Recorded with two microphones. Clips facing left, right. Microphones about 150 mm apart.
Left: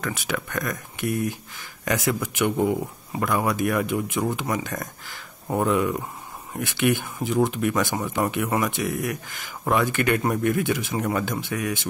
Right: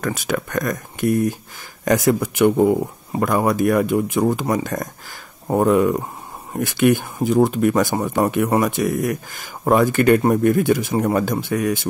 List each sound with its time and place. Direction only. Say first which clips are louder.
0.0 s speech: right 6 dB; 45° right (ahead or behind)